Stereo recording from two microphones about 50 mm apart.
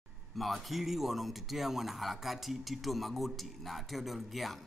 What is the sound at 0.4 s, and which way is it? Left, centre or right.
Speech, centre.